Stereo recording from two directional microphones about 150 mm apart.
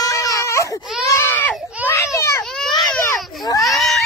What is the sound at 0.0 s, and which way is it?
Baby cry, 25° left (ahead or behind).